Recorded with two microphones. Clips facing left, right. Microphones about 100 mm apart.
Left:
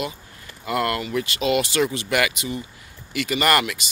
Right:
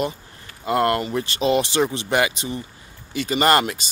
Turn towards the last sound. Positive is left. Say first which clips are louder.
# right 3 dB
turn(degrees=-35)  # may be behind; listen again after turning